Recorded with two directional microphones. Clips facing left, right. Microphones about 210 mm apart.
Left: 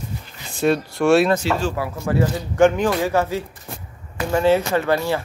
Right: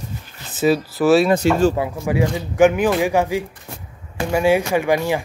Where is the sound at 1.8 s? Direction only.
10° right (ahead or behind).